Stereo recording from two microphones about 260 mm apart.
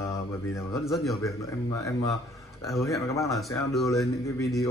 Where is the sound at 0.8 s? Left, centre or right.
Centre.